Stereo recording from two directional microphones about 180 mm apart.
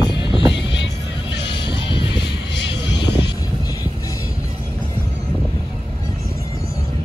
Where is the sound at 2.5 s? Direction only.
75° left (ahead or behind).